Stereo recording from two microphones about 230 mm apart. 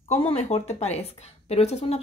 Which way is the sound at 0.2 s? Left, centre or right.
Left.